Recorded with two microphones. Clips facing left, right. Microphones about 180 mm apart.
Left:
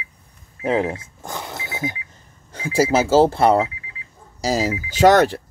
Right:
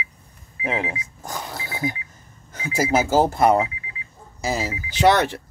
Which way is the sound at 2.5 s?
30° left (ahead or behind).